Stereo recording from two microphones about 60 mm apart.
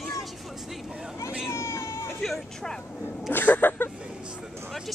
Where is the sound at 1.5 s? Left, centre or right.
Left.